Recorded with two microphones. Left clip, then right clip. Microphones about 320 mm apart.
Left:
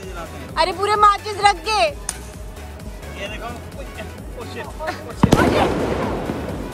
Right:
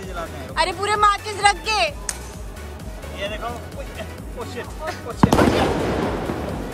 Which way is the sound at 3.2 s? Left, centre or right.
Centre.